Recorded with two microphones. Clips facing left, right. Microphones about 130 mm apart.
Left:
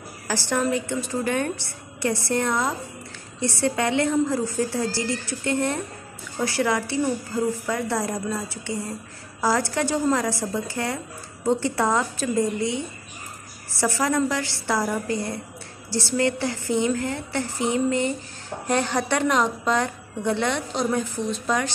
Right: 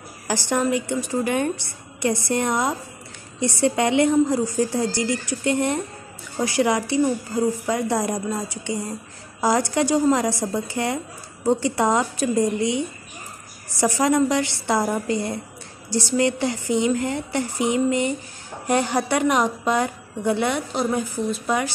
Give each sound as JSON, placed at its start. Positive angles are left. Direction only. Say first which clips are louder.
{"t": 0.3, "sound": "a woman's voice", "louder": "right 2 dB", "side_deg": -15}